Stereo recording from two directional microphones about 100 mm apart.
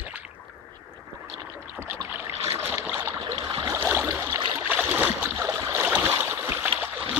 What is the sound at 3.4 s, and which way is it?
Stream, 45° right (ahead or behind).